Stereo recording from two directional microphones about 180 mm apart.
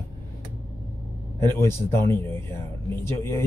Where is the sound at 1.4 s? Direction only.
15° left (ahead or behind).